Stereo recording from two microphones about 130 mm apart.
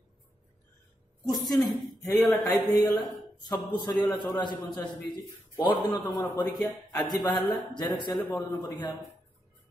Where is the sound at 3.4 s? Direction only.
35° left (ahead or behind).